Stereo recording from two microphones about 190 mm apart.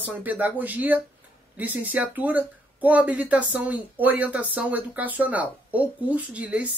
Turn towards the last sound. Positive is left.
turn(degrees=-10)  # may be behind; listen again after turning